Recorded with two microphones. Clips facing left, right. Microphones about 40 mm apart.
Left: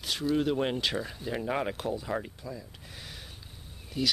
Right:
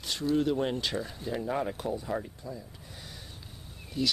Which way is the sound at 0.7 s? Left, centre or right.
Centre.